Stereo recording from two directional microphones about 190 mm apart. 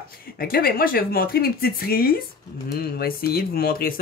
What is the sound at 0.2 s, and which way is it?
Speech, 50° left (ahead or behind).